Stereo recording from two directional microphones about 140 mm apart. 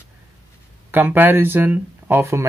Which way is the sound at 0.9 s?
15° right (ahead or behind).